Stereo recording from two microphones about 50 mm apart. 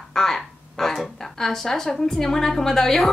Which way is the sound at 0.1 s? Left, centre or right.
Centre.